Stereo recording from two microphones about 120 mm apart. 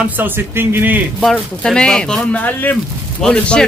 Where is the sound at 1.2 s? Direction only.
5° left (ahead or behind).